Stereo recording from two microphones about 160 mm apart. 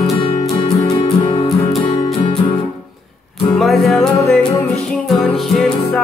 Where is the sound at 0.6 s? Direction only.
40° left (ahead or behind).